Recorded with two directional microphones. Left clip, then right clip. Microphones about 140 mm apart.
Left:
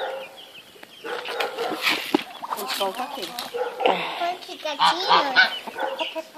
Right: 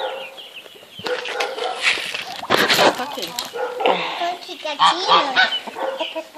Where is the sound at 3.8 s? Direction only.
5° left (ahead or behind).